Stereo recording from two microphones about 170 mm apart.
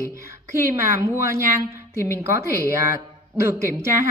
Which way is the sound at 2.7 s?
15° right (ahead or behind).